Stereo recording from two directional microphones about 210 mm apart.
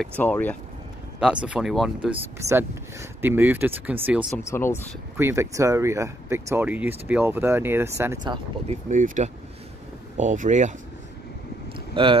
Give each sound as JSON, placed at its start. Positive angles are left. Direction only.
{"t": 0.2, "sound": "speech", "side_deg": 10}
{"t": 1.2, "sound": "speech", "side_deg": -5}
{"t": 4.4, "sound": "speech", "side_deg": 10}
{"t": 5.1, "sound": "speech", "side_deg": -10}
{"t": 8.9, "sound": "speech", "side_deg": -35}
{"t": 11.9, "sound": "speech", "side_deg": -25}